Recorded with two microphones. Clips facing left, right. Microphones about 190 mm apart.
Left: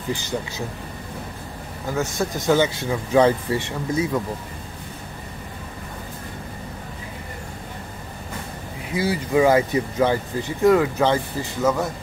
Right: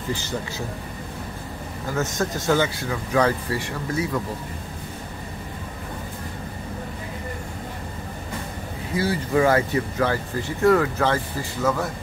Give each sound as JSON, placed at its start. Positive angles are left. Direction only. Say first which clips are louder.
{"t": 2.0, "sound": "speech", "louder": "left 1 dB", "side_deg": 15}
{"t": 8.9, "sound": "speech", "louder": "left 1 dB", "side_deg": 15}